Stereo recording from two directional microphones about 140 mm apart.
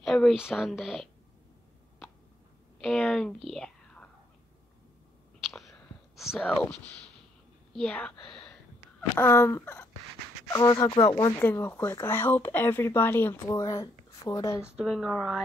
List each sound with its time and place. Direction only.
0.0 s speech: centre (ahead or behind)
2.8 s speech: centre (ahead or behind)
5.4 s whispering: centre (ahead or behind)
6.5 s a woman's voice: 10° left (ahead or behind)
9.1 s speech: 15° left (ahead or behind); by 11.4 s 30° left (ahead or behind)
11.4 s speech: 15° left (ahead or behind)
14.8 s speech: centre (ahead or behind)